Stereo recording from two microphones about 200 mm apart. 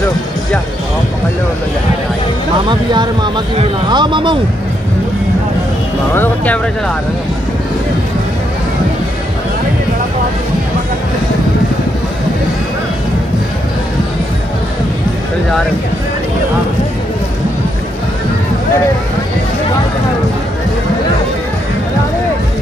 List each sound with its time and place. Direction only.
2.7 s speech: 20° right (ahead or behind)
6.1 s speech: 10° left (ahead or behind)